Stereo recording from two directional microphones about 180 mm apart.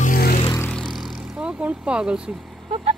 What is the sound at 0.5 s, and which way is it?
Vehicle, 15° left (ahead or behind).